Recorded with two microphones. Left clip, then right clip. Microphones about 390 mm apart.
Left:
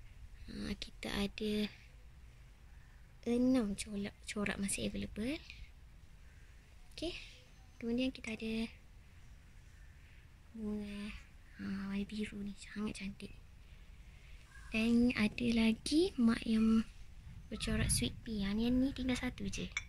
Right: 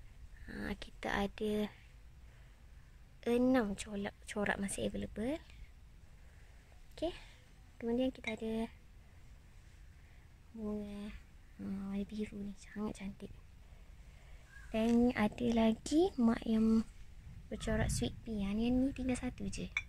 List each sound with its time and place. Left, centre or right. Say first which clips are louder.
0.5 s a sound: right 1 dB; centre
3.2 s speech: right 2 dB; right
7.0 s a child's voice: right 3 dB; centre
10.8 s speech: left 1 dB; centre
14.7 s a woman's voice: right 1 dB; centre
18.4 s a woman's voice: even; centre